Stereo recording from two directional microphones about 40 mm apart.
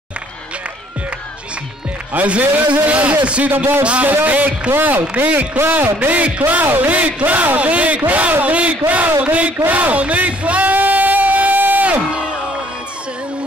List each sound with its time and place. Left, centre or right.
2.1 s speech: right
3.4 s a man's voice: right
4.0 s a man's voice: right
4.6 s a man's voice: right
6.5 s a man's voice: right
7.0 s speech: right
9.7 s a sound: right
12.1 s crowd: right